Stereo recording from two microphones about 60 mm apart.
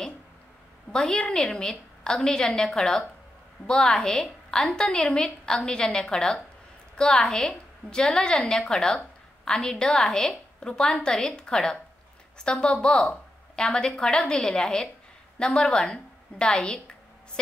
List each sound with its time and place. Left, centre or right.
0.9 s a woman's voice: centre